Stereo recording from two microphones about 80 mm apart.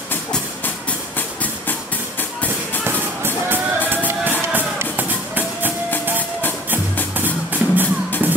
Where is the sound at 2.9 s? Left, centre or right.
Right.